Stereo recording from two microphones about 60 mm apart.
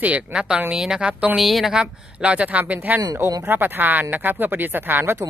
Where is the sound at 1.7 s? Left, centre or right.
Centre; by 5.1 s right.